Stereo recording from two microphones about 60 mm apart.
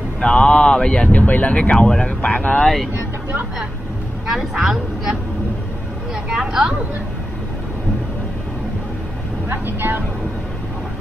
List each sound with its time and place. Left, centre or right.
0.2 s speech: centre
1.1 s speech: left
2.6 s speech: centre
2.9 s music: right
4.3 s speech: centre
6.2 s speech: centre
9.5 s speech: right